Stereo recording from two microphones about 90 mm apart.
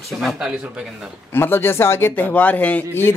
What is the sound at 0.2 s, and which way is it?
Speech, centre (ahead or behind).